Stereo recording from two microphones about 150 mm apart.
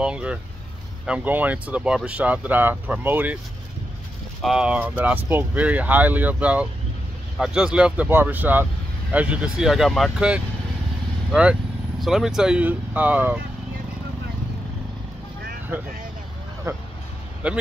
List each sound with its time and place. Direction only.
0.0 s speech: 5° right (ahead or behind)
4.4 s speech: 5° right (ahead or behind)
12.0 s speech: centre (ahead or behind)
16.7 s speech: 15° right (ahead or behind)